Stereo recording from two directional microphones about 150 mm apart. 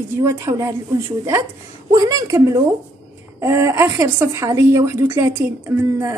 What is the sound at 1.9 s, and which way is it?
Speech, 25° right (ahead or behind).